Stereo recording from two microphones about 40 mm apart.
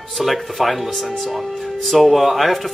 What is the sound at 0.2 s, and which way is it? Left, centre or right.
Speech, centre.